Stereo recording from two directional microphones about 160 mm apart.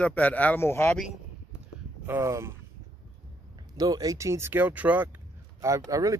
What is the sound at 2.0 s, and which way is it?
Speech, 15° right (ahead or behind).